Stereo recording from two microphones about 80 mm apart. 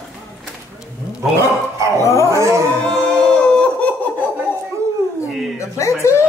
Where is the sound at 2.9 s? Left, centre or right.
Centre.